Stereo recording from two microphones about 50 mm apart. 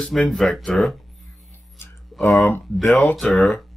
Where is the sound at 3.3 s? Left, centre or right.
Centre.